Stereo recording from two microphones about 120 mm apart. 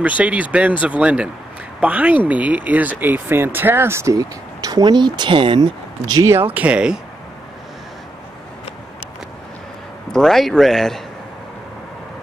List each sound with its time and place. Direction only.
0.2 s speech: 10° right (ahead or behind); by 6.3 s 35° right (ahead or behind)
6.5 s speech: 10° right (ahead or behind)
10.1 s a man's voice: centre (ahead or behind)